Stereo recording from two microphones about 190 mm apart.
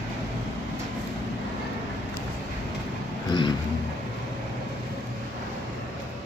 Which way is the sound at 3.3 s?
25° left (ahead or behind).